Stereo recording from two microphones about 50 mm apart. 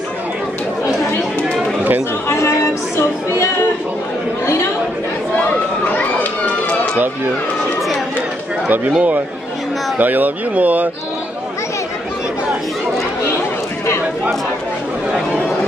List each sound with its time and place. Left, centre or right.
2.2 s a sound: left
8.6 s speech: right
9.9 s speech: right